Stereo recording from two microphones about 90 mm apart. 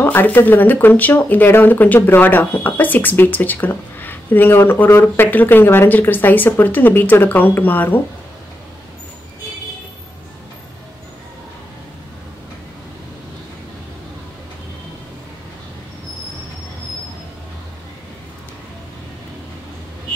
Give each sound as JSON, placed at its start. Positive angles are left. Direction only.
{"t": 0.0, "sound": "speech", "side_deg": 20}